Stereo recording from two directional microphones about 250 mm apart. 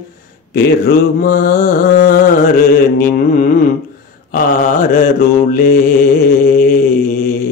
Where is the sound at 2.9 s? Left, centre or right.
Left.